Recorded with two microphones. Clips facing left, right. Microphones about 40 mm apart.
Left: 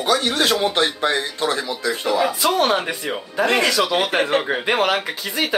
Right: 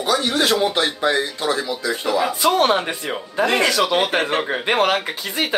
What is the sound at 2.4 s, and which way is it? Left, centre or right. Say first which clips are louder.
Speech: right 2 dB; centre.